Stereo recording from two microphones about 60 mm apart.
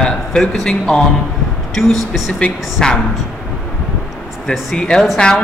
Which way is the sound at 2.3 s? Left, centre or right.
Centre.